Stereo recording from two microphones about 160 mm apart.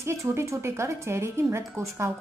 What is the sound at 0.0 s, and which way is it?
A woman's voice, 15° right (ahead or behind).